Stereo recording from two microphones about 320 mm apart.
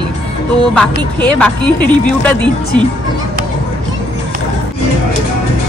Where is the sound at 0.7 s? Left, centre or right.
Centre.